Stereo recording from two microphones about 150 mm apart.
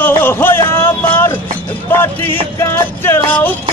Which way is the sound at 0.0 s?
15° left (ahead or behind).